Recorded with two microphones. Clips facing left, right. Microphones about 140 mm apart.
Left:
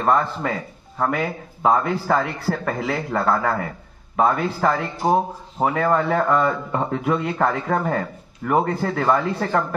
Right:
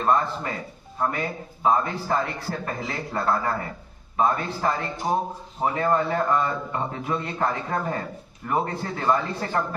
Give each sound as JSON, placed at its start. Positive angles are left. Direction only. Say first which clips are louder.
{"t": 0.0, "sound": "a man's voice", "louder": "left 3 dB", "side_deg": 60}